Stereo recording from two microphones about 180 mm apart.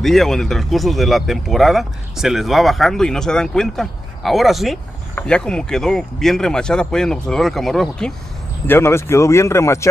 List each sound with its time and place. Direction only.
0.0 s speech: centre (ahead or behind)
8.6 s speech: 15° left (ahead or behind)